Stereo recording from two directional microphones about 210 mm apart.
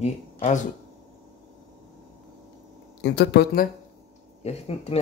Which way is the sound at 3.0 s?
55° left (ahead or behind).